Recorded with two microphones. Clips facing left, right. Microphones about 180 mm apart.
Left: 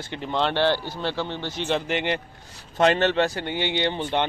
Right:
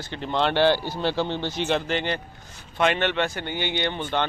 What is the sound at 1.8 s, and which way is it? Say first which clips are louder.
Speech: left 1 dB; 20° left (ahead or behind).